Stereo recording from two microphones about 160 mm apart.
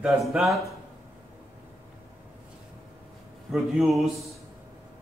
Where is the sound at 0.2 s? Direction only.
Centre (ahead or behind).